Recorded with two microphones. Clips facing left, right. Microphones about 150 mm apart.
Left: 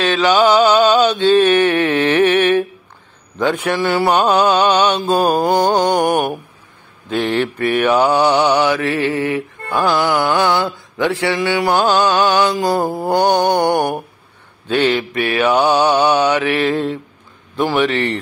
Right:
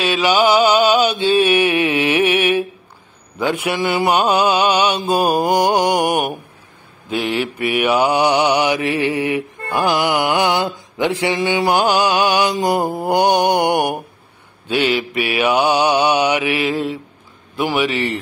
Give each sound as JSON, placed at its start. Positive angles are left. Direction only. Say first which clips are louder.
{"t": 0.0, "sound": "mantra", "louder": "left 2 dB", "side_deg": -10}